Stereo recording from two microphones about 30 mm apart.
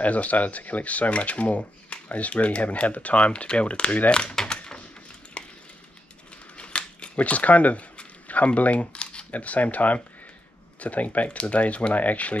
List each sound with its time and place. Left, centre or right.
0.0 s speech: left
5.4 s a sound: left
6.5 s scissors: left
7.2 s speech: left
8.9 s a sound: left
9.3 s speech: left